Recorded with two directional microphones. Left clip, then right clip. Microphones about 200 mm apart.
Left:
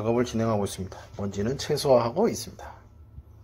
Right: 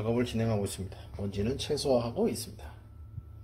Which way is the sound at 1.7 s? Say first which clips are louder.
Left 8 dB; 35° left (ahead or behind).